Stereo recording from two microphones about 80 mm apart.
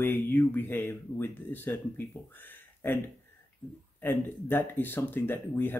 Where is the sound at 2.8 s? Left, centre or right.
Left.